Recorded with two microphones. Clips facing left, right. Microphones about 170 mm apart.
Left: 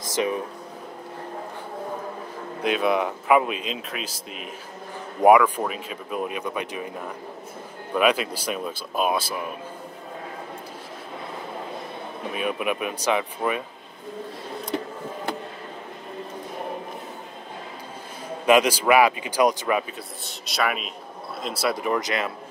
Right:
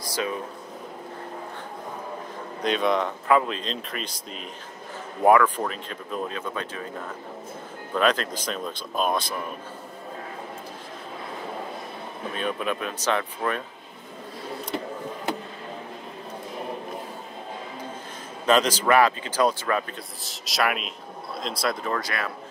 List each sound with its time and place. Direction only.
0.1 s speech: 20° left (ahead or behind)
2.6 s speech: 5° left (ahead or behind)
5.2 s speech: 10° left (ahead or behind)
7.9 s speech: 10° left (ahead or behind)
12.3 s speech: 10° left (ahead or behind)
18.4 s speech: 10° left (ahead or behind)
20.2 s speech: centre (ahead or behind); by 22.3 s 20° left (ahead or behind)